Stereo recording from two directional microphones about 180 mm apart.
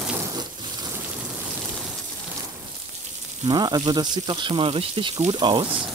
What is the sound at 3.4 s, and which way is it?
Speech, 25° right (ahead or behind).